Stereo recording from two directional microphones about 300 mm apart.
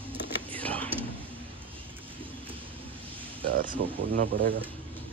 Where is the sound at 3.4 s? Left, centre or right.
Right.